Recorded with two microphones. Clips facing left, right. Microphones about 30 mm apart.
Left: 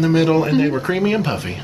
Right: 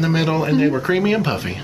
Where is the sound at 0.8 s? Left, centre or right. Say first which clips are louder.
Right 1 dB; centre.